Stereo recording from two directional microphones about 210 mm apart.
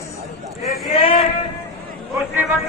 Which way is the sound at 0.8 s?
30° left (ahead or behind).